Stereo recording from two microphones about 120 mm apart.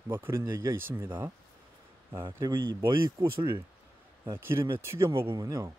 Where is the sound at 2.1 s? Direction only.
25° right (ahead or behind).